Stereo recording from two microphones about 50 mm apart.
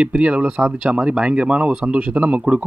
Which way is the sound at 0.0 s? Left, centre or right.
Right.